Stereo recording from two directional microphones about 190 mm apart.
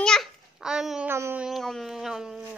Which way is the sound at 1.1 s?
10° right (ahead or behind).